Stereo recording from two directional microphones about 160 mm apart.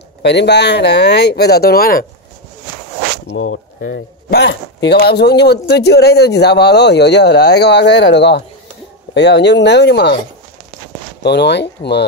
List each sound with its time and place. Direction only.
0.2 s speech: 90° left; by 2.0 s 65° left (ahead or behind)
3.3 s speech: 90° left
11.2 s speech: 90° left